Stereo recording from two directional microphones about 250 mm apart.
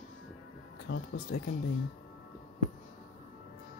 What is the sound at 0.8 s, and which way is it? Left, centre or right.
Speech, left.